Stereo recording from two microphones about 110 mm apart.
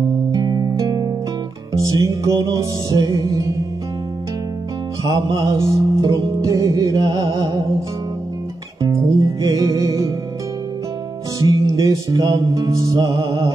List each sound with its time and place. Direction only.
0.3 s music: 35° right (ahead or behind)
5.1 s music: 40° right (ahead or behind)
5.6 s music: 30° right (ahead or behind)
8.8 s music: 35° right (ahead or behind)
11.3 s music: 30° right (ahead or behind)